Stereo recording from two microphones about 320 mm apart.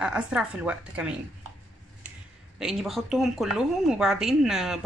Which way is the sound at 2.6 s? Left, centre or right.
Centre.